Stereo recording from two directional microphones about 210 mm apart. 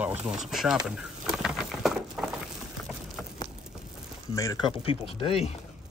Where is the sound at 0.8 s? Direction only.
5° right (ahead or behind).